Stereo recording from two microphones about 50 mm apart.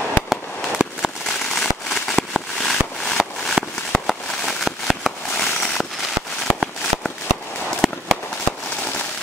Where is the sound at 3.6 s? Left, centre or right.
Centre.